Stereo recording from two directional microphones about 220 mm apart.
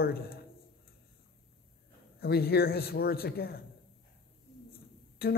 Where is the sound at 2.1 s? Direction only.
45° left (ahead or behind).